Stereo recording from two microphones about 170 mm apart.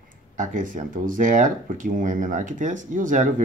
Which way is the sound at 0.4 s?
50° right (ahead or behind).